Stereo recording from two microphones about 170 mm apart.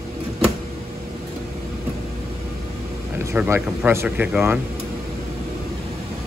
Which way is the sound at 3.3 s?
15° right (ahead or behind).